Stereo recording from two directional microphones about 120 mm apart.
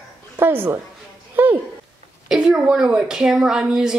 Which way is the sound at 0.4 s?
20° right (ahead or behind).